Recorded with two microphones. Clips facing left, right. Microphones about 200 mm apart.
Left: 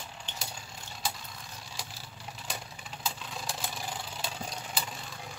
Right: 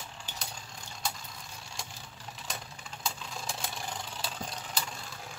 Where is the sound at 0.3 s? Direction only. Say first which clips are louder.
Left 1 dB; 10° right (ahead or behind).